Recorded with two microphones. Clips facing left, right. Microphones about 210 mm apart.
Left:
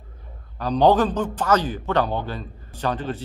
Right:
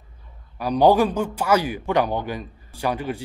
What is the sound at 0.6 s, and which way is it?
Speech, 10° right (ahead or behind).